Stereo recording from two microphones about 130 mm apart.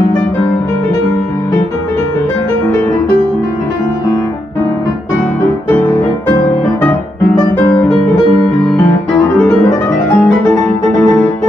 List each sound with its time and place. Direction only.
7.5 s music: 15° left (ahead or behind)
9.1 s music: 5° left (ahead or behind)
9.7 s music: 25° left (ahead or behind)